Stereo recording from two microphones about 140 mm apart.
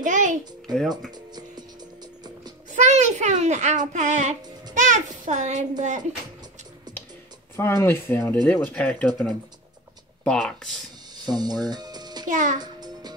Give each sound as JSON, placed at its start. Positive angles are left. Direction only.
{"t": 0.0, "sound": "a sound", "side_deg": -65}
{"t": 0.7, "sound": "speech", "side_deg": 0}
{"t": 2.7, "sound": "a child's voice", "side_deg": -55}
{"t": 7.5, "sound": "speech", "side_deg": 15}
{"t": 11.2, "sound": "music", "side_deg": -30}
{"t": 12.3, "sound": "a child's voice", "side_deg": -65}
{"t": 12.5, "sound": "music", "side_deg": -30}